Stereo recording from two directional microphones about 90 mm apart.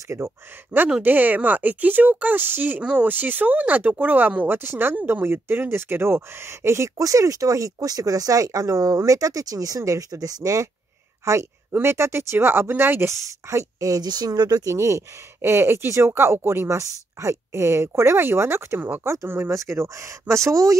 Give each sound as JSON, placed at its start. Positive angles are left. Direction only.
{"t": 1.0, "sound": "speech", "side_deg": -20}
{"t": 13.1, "sound": "speech", "side_deg": -35}
{"t": 14.7, "sound": "speech", "side_deg": -30}